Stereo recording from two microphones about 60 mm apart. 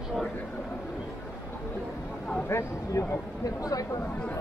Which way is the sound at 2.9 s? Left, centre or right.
Left.